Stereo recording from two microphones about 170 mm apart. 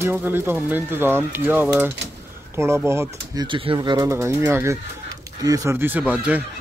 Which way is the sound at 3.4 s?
30° right (ahead or behind).